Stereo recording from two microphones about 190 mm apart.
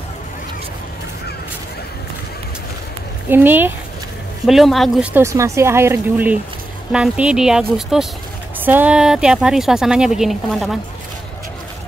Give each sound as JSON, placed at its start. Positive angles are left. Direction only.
{"t": 3.3, "sound": "speech", "side_deg": -10}